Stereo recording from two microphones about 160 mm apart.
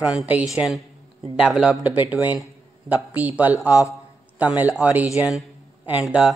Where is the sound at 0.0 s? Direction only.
5° right (ahead or behind).